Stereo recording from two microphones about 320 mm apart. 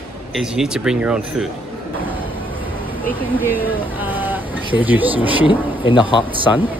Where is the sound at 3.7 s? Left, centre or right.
Centre.